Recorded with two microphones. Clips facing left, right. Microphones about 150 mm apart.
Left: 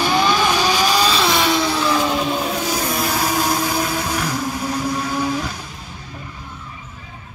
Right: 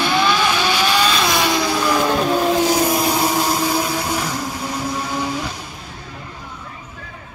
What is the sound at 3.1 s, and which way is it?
Vehicle, 10° right (ahead or behind).